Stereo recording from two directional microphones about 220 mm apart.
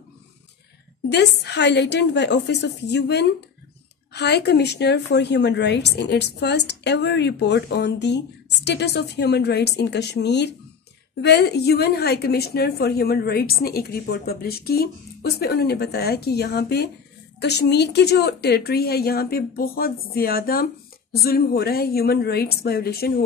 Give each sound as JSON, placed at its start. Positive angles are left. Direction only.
{"t": 1.0, "sound": "a woman's voice", "side_deg": 50}